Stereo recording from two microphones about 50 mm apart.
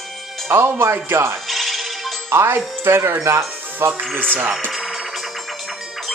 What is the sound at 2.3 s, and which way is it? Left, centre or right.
Speech, right.